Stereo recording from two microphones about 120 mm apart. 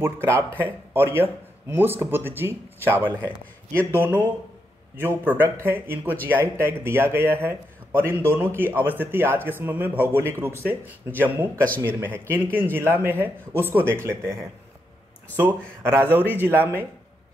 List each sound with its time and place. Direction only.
0.0 s speech: 20° right (ahead or behind)
4.0 s speech: 15° right (ahead or behind)
15.8 s speech: 20° right (ahead or behind)